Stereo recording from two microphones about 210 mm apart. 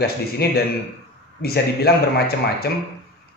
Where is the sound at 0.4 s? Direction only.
50° left (ahead or behind).